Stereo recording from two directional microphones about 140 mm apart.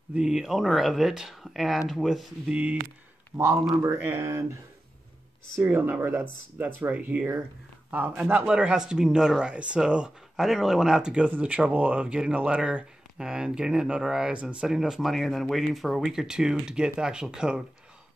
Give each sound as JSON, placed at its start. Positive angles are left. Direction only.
{"t": 0.1, "sound": "speech", "side_deg": -5}
{"t": 3.3, "sound": "speech", "side_deg": 0}
{"t": 3.8, "sound": "speech", "side_deg": -15}
{"t": 5.6, "sound": "speech", "side_deg": -15}